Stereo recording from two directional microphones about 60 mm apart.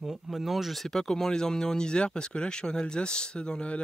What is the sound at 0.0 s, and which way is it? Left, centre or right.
Speech, centre.